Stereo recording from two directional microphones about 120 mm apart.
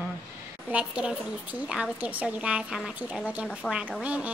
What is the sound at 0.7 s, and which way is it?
A woman's voice, 10° right (ahead or behind).